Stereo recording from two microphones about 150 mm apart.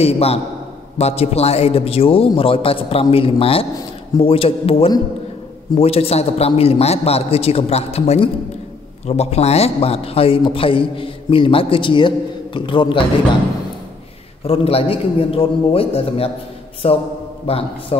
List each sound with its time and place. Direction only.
0.0 s a man's voice: 40° left (ahead or behind)
14.4 s a man's voice: 40° left (ahead or behind)